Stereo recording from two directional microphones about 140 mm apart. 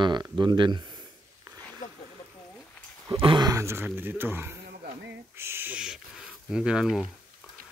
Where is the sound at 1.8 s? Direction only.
65° left (ahead or behind).